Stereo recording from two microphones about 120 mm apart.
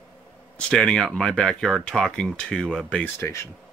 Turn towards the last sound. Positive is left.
turn(degrees=20)  # may be behind; listen again after turning